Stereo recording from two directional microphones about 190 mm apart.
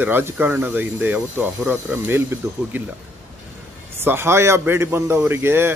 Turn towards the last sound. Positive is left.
turn(degrees=-10)  # may be behind; listen again after turning